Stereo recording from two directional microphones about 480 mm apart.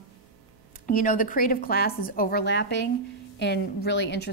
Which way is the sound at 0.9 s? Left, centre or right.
Centre.